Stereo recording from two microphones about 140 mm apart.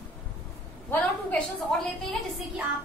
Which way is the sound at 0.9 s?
10° left (ahead or behind).